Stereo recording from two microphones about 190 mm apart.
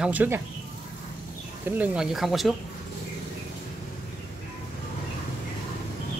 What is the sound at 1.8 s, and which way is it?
Speech, 5° right (ahead or behind).